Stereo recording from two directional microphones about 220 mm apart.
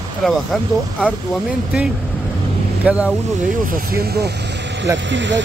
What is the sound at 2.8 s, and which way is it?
Speech, 5° right (ahead or behind).